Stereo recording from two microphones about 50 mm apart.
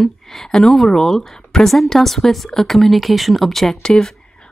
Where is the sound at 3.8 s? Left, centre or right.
Centre.